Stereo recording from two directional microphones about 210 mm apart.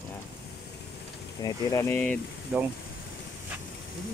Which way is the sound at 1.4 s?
15° left (ahead or behind).